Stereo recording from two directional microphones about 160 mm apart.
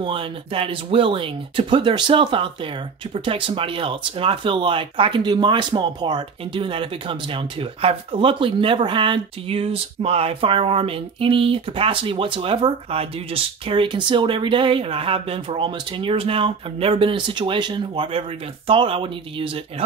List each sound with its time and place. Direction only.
0.0 s speech: 30° right (ahead or behind)